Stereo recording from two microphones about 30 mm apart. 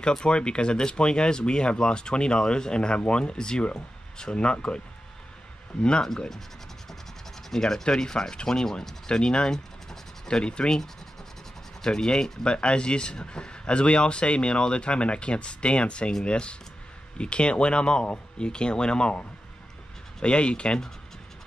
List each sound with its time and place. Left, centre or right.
0.0 s speech: left
7.5 s speech: centre
11.8 s speech: left
20.2 s speech: left